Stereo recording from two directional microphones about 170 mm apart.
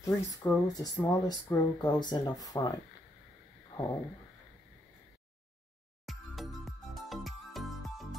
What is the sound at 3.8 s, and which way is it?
Speech, 20° left (ahead or behind).